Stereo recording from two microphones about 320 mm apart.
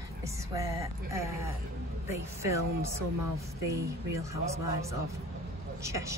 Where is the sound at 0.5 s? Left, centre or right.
Centre.